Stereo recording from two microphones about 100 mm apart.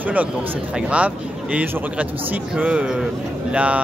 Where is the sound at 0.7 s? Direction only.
10° right (ahead or behind).